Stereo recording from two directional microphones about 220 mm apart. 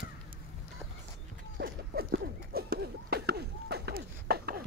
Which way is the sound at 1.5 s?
45° right (ahead or behind).